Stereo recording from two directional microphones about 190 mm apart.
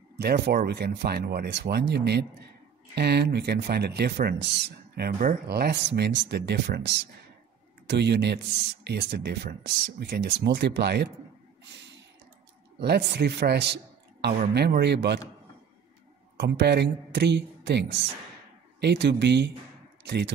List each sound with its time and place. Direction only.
0.2 s a man's voice: 55° right (ahead or behind)
12.8 s speech: 60° right (ahead or behind)
16.3 s speech: 60° right (ahead or behind)